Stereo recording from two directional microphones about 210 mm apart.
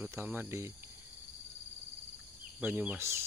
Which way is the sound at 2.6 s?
10° right (ahead or behind).